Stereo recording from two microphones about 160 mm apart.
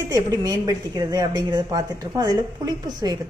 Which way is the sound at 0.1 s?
20° right (ahead or behind).